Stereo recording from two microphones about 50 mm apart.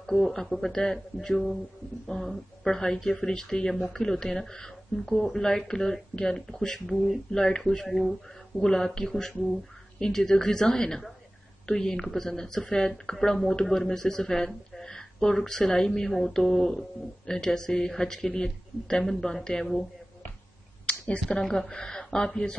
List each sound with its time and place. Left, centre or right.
0.0 s speech: centre
20.8 s a sound: left
21.4 s speech: centre